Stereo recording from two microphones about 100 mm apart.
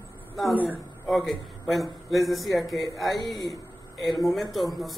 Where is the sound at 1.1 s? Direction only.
Centre (ahead or behind).